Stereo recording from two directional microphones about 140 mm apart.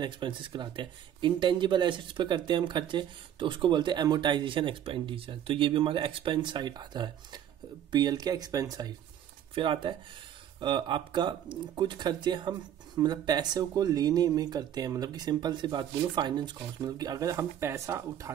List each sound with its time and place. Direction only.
0.0 s speech: 35° right (ahead or behind)